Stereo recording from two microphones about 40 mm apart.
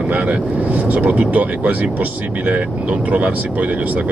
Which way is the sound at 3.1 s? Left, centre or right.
Right.